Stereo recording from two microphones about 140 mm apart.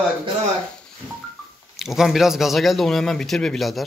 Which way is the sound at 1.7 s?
Centre (ahead or behind).